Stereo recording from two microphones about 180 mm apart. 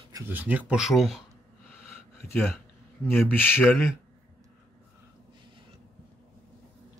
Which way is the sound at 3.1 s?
10° left (ahead or behind).